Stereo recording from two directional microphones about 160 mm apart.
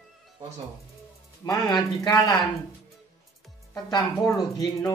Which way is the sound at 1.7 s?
25° left (ahead or behind).